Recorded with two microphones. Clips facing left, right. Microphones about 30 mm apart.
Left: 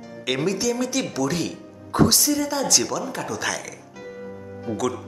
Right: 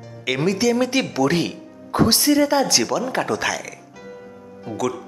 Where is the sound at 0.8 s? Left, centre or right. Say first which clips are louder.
Right 5 dB; right.